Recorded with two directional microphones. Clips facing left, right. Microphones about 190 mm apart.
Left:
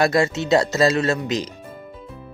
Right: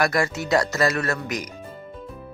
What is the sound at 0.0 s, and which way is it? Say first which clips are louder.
Speech: left 4 dB; 25° left (ahead or behind).